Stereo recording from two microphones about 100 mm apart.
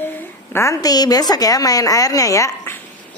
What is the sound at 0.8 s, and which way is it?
A woman's voice, 40° left (ahead or behind).